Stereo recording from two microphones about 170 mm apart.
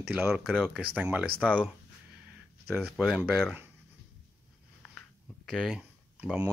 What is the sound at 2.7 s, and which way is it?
Speech, centre (ahead or behind).